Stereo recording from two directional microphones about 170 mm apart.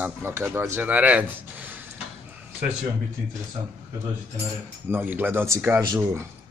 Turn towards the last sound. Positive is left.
turn(degrees=-20)  # may be behind; listen again after turning